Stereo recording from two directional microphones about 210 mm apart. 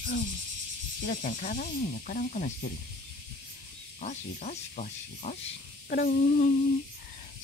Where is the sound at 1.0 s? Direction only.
40° left (ahead or behind).